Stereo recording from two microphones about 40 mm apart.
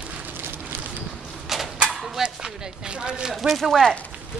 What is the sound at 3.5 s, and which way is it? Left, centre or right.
Speech, centre.